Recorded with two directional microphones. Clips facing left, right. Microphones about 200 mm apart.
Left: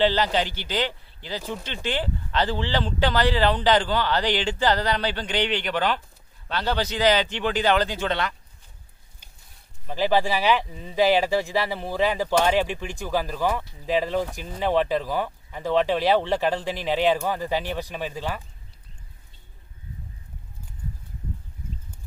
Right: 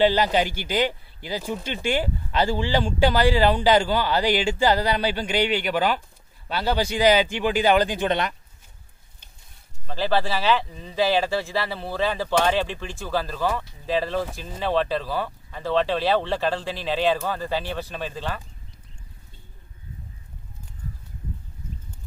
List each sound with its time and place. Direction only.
0.0 s speech: 10° right (ahead or behind)
9.8 s speech: 15° left (ahead or behind)